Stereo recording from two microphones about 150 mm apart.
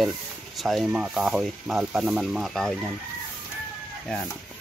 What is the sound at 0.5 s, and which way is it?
Speech, centre (ahead or behind).